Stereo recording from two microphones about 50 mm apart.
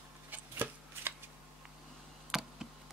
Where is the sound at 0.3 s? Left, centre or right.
Right.